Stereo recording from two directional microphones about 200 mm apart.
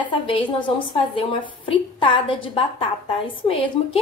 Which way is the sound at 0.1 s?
25° left (ahead or behind).